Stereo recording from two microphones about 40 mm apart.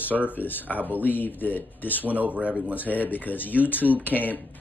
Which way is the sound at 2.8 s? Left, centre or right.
Left.